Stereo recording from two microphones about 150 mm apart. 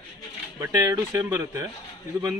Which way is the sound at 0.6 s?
20° right (ahead or behind).